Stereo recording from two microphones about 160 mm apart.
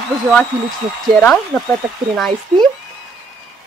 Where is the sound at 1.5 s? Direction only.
15° left (ahead or behind).